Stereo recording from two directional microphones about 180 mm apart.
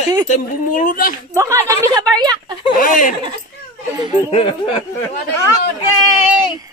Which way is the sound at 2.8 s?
50° left (ahead or behind).